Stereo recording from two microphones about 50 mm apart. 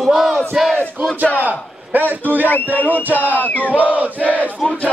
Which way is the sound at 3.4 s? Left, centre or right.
Left.